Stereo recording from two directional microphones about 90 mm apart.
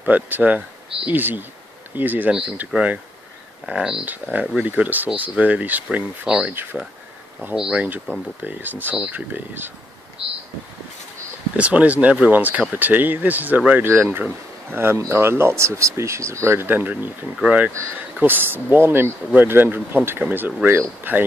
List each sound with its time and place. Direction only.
0.0 s speech: 15° right (ahead or behind)
6.5 s speech: 20° right (ahead or behind)
7.5 s speech: 10° right (ahead or behind)
11.5 s speech: 15° right (ahead or behind)